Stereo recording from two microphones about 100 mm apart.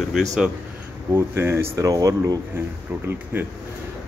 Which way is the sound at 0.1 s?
Centre (ahead or behind).